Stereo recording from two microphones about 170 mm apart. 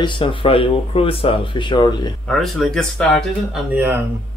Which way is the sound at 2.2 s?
Centre (ahead or behind).